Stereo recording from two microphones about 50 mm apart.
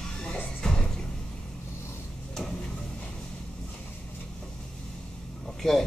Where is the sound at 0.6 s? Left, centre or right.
Centre.